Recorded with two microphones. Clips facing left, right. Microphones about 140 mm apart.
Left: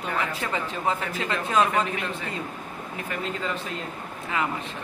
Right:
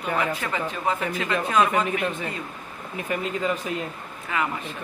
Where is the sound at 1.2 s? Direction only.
25° left (ahead or behind).